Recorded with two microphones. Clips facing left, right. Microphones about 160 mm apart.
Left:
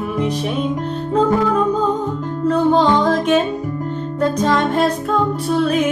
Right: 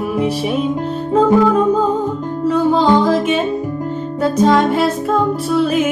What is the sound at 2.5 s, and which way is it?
Music, 5° right (ahead or behind).